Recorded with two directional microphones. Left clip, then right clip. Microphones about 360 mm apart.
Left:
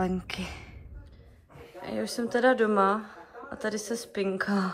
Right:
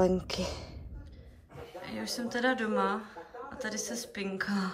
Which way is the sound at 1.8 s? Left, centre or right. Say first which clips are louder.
Left 6 dB; centre.